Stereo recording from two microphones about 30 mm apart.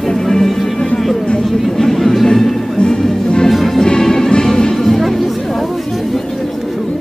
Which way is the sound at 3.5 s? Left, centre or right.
Centre.